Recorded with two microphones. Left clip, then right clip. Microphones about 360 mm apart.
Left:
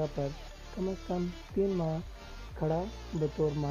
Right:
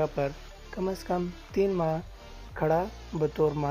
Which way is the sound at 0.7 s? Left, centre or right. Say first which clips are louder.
Right 5 dB; right.